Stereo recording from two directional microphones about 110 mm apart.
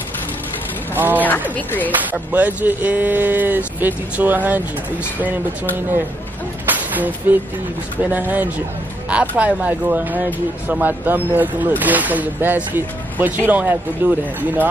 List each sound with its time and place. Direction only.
0.9 s speech: 15° right (ahead or behind)
6.7 s a sound: 15° right (ahead or behind)
8.0 s speech: 15° right (ahead or behind)